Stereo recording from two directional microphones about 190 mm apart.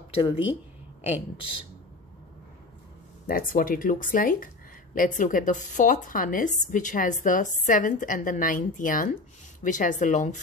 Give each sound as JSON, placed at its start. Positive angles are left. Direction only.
{"t": 0.1, "sound": "speech", "side_deg": 30}
{"t": 3.3, "sound": "a woman's voice", "side_deg": 50}